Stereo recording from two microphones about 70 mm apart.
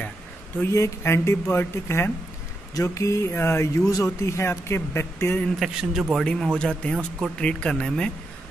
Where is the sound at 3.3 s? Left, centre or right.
Left.